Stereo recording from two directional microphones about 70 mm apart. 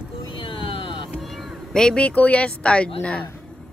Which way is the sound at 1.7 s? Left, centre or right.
Centre.